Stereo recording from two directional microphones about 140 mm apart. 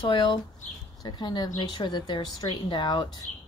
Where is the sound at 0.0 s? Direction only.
35° left (ahead or behind).